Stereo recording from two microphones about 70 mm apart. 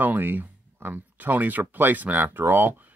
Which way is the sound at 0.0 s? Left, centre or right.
Right.